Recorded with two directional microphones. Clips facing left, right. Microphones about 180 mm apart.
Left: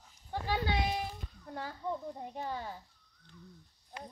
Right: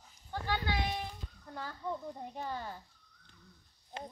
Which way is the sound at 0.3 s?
25° left (ahead or behind).